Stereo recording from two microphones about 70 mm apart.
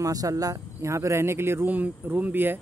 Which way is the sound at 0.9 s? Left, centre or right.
Right.